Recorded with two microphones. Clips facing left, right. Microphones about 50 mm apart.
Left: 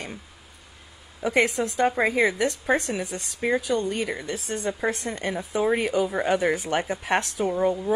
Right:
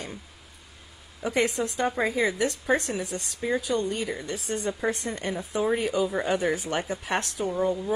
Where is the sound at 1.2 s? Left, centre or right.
Left.